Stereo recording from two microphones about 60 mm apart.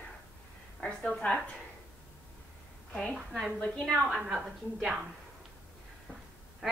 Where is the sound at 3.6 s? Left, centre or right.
Centre.